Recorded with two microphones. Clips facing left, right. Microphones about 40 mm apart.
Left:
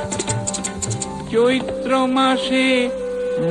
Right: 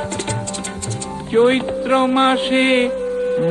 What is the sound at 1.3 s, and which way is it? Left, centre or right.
Speech, centre.